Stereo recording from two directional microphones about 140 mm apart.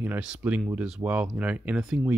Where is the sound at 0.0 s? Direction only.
10° right (ahead or behind).